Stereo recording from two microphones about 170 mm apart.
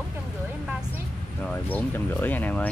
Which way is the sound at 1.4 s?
10° left (ahead or behind).